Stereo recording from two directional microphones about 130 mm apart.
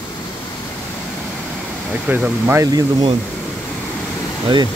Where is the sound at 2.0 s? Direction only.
15° right (ahead or behind).